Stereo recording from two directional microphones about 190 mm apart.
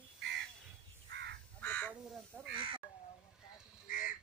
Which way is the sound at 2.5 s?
25° right (ahead or behind).